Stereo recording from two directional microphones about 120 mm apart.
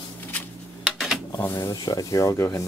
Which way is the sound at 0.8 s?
5° right (ahead or behind).